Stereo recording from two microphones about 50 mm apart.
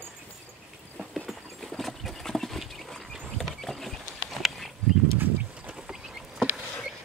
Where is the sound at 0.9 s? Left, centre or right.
Centre.